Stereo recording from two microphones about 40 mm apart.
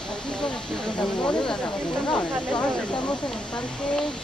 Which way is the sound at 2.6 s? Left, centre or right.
Left.